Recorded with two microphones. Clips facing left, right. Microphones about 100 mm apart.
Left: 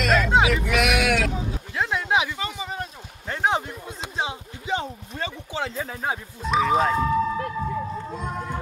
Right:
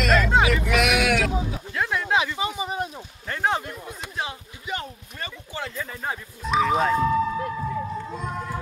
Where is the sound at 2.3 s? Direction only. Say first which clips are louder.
Right 3 dB; 15° right (ahead or behind).